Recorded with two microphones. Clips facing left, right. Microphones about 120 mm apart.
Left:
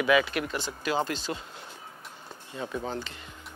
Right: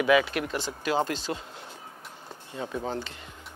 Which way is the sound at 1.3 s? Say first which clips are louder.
Right 1 dB; 50° right (ahead or behind).